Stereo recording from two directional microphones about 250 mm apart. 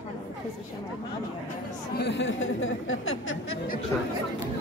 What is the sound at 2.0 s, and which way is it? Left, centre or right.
Speech, left.